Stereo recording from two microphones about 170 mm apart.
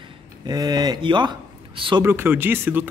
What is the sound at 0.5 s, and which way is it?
Speech, 25° right (ahead or behind).